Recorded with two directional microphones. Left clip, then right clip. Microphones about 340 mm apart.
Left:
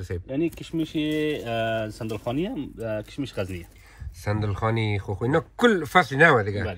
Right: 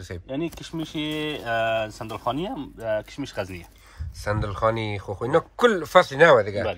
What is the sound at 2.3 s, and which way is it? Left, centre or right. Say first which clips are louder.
Speech: left 1 dB; centre.